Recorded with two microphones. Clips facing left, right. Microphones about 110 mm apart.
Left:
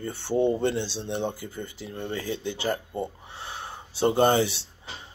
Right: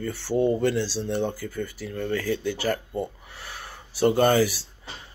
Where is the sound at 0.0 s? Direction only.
25° left (ahead or behind).